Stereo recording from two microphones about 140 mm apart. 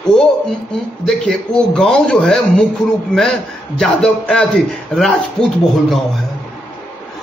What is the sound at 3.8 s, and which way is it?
A man's voice, 5° left (ahead or behind).